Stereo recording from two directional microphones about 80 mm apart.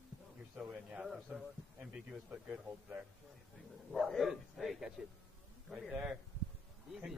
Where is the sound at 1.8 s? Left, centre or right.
Centre.